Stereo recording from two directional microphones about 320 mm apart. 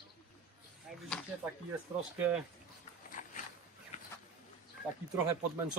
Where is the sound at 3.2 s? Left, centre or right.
Left.